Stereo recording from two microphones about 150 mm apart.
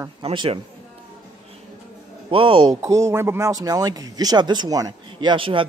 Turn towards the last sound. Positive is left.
turn(degrees=-35)  # may be behind; listen again after turning